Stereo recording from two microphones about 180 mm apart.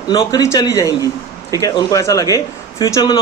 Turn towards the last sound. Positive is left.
turn(degrees=20)  # may be behind; listen again after turning